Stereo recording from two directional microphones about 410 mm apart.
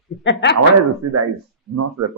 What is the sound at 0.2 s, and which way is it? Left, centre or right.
Speech, left.